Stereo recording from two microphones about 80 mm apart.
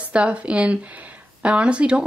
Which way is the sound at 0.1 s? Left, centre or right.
Centre.